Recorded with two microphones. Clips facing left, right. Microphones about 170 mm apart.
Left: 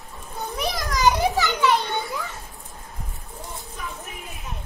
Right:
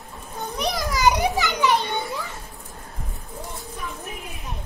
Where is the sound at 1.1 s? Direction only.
15° right (ahead or behind).